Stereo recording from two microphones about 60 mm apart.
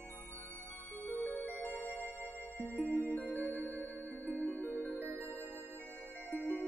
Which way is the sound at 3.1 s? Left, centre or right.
Left.